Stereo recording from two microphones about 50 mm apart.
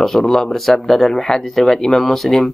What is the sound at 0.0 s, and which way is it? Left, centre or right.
Speech, centre.